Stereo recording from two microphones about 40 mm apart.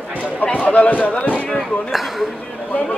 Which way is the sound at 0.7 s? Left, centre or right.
Left.